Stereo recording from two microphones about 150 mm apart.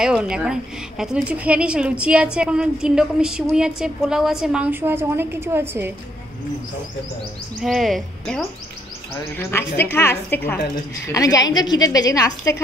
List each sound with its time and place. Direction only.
0.0 s a woman's voice: 5° right (ahead or behind)
7.6 s a woman's voice: centre (ahead or behind)
9.1 s a man's voice: 15° left (ahead or behind)